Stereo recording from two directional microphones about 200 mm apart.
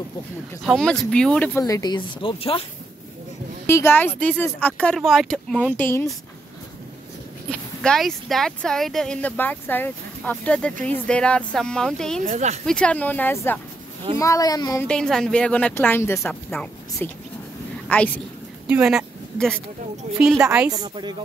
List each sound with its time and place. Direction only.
0.7 s speech: centre (ahead or behind)
1.6 s speech: 20° left (ahead or behind)
3.6 s speech: 10° left (ahead or behind)
7.8 s speech: centre (ahead or behind)
12.3 s speech: 35° right (ahead or behind)
12.6 s speech: 5° left (ahead or behind)
14.9 s speech: 5° left (ahead or behind)
18.7 s speech: 5° right (ahead or behind)
20.7 s speech: 20° right (ahead or behind)